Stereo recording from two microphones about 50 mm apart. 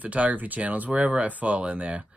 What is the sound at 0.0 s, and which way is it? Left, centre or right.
Speech, right.